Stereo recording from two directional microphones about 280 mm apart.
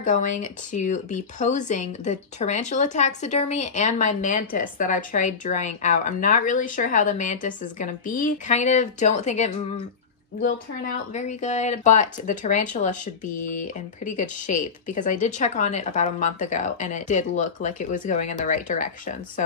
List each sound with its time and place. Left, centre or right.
0.0 s speech: left
11.1 s speech: left